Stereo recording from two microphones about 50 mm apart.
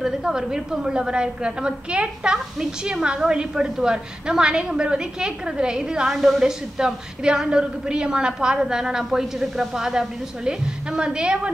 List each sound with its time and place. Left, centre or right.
0.0 s a woman's voice: centre
6.0 s a woman's voice: centre